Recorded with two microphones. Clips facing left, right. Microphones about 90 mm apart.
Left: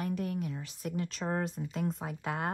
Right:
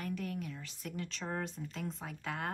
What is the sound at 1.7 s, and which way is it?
Speech, 45° left (ahead or behind).